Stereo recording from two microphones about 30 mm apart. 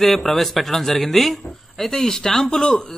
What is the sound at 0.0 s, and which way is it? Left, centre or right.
A man's voice, centre.